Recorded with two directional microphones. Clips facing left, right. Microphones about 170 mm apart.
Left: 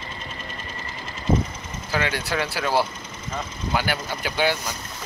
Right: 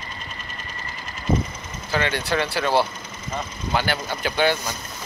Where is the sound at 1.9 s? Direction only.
10° left (ahead or behind).